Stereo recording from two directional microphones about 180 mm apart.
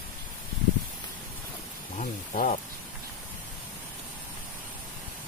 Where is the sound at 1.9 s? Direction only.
45° left (ahead or behind).